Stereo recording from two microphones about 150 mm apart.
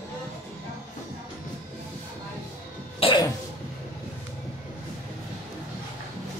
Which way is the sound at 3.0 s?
35° left (ahead or behind).